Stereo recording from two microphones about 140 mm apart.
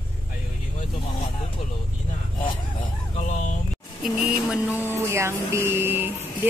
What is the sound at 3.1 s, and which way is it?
Vehicle, 55° left (ahead or behind).